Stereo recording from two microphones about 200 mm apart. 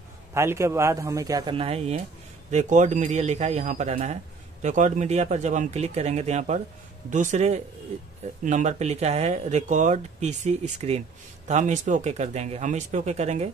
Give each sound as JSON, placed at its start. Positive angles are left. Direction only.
{"t": 0.3, "sound": "a man's voice", "side_deg": -15}